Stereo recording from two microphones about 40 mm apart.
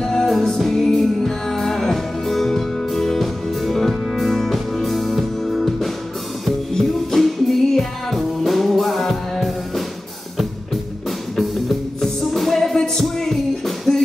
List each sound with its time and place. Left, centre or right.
0.0 s music: centre